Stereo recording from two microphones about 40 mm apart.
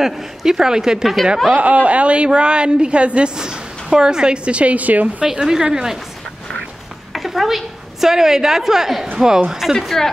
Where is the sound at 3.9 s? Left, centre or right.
Centre; by 5.2 s right.